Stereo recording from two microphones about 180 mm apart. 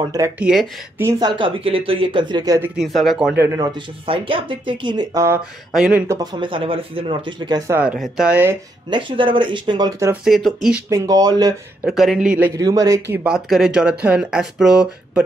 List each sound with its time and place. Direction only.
0.4 s speech: 5° right (ahead or behind)
1.0 s speech: 25° right (ahead or behind)
2.8 s speech: centre (ahead or behind)
3.3 s speech: 20° right (ahead or behind)
4.0 s speech: 30° right (ahead or behind)
5.7 s speech: 5° right (ahead or behind)
7.8 s speech: 5° right (ahead or behind)
8.9 s speech: 30° right (ahead or behind)
10.2 s speech: centre (ahead or behind)
10.9 s speech: 20° right (ahead or behind)
11.8 s speech: centre (ahead or behind)